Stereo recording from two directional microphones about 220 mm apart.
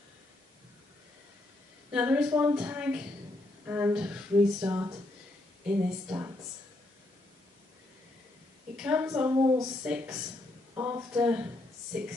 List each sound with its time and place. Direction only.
1.9 s speech: 5° right (ahead or behind)
4.6 s a woman's voice: 15° right (ahead or behind)
8.7 s a woman's voice: 5° right (ahead or behind)
9.8 s a woman's voice: 5° right (ahead or behind)